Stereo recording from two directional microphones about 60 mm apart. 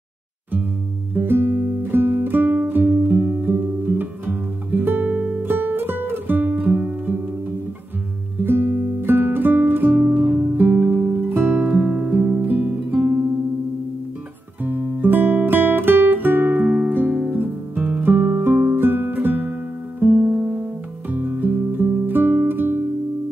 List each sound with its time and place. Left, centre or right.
1.1 s music: right
3.4 s guitar: right
8.5 s guitar: right
10.0 s music: centre
11.2 s music: right
11.5 s music: centre
12.3 s music: right
14.6 s music: right
16.6 s music: centre
16.9 s music: right
18.0 s music: right
22.0 s guitar: right